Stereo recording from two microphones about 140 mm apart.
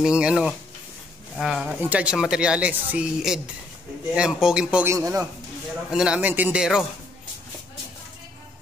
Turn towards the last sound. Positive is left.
turn(degrees=-5)  # may be behind; listen again after turning